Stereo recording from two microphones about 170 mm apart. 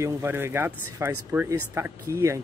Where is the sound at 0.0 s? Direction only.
15° right (ahead or behind).